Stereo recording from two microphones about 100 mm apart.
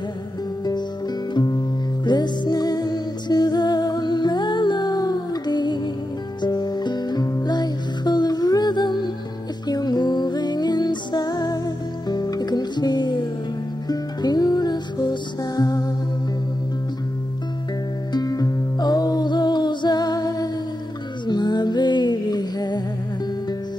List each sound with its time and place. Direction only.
1.3 s music: 45° left (ahead or behind)
18.1 s music: 40° left (ahead or behind)